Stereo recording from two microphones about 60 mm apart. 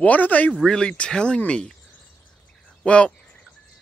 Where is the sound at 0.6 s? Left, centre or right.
Centre.